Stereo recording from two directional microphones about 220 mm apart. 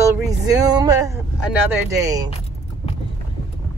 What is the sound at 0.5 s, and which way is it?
Speech, 15° right (ahead or behind).